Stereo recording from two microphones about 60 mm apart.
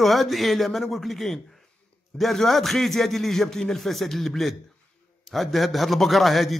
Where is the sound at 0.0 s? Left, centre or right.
Centre.